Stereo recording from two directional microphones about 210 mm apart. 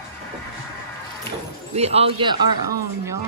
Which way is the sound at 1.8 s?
30° right (ahead or behind).